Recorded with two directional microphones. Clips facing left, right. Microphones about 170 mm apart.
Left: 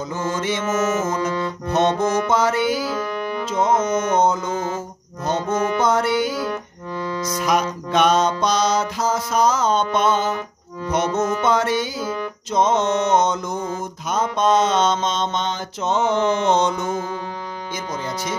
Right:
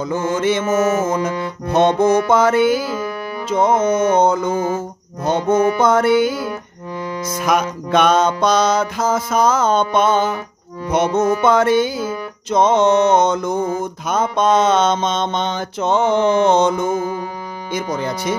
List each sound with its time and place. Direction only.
0.0 s music: 55° right (ahead or behind)
1.7 s music: 55° right (ahead or behind)
2.9 s music: 5° right (ahead or behind)
3.4 s music: 60° right (ahead or behind)
6.4 s music: 10° right (ahead or behind)
7.3 s music: 55° right (ahead or behind)
12.0 s music: 10° right (ahead or behind)
12.4 s music: 60° right (ahead or behind)
16.9 s music: 10° right (ahead or behind)
17.7 s music: 60° right (ahead or behind)